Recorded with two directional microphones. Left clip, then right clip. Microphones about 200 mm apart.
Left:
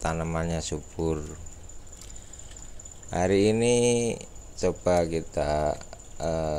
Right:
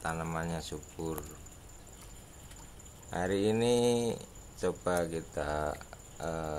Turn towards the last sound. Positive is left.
turn(degrees=20)  # may be behind; listen again after turning